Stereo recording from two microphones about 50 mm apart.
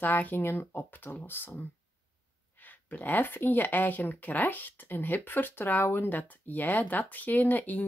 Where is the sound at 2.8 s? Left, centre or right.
Left.